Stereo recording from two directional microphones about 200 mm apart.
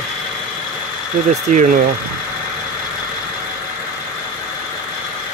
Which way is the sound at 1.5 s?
40° right (ahead or behind).